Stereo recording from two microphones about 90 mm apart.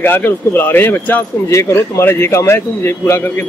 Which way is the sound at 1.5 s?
35° left (ahead or behind).